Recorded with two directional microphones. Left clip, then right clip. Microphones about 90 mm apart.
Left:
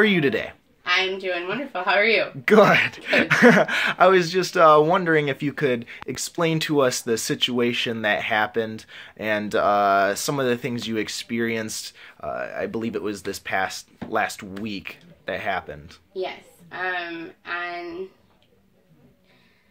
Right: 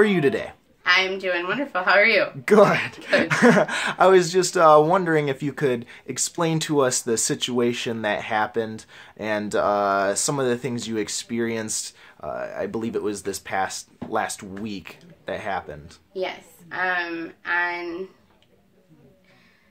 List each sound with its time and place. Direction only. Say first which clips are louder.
0.0 s speech: even; 15° right (ahead or behind)
0.8 s a woman's voice: right 2 dB; 40° right (ahead or behind)
2.4 s speech: left 2 dB; centre (ahead or behind)
16.2 s a woman's voice: right 1 dB; 50° right (ahead or behind)